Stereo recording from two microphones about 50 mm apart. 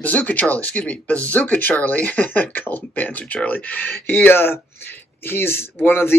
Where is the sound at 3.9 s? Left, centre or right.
Left.